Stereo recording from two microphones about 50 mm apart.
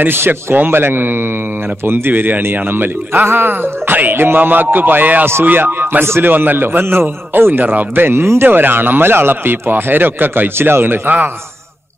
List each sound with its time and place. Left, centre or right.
0.0 s a man's voice: right
6.2 s a man's voice: right